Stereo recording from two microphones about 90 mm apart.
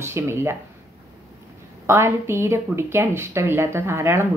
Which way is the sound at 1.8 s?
30° right (ahead or behind).